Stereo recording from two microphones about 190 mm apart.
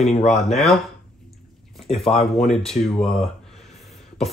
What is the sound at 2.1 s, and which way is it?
Speech, 35° left (ahead or behind).